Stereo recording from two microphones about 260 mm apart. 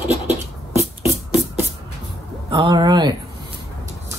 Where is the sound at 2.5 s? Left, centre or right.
Centre.